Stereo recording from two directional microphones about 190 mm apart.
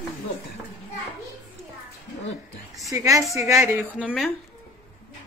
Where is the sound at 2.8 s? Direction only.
15° right (ahead or behind).